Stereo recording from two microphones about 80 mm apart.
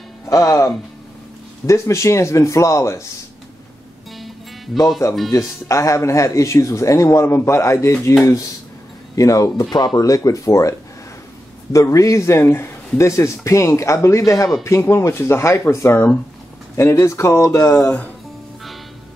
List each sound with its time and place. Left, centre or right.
0.3 s speech: left
5.3 s speech: left
9.1 s speech: left
17.0 s speech: left